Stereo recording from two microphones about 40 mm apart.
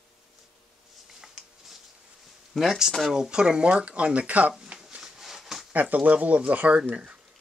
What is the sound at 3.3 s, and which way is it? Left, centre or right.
Speech, right.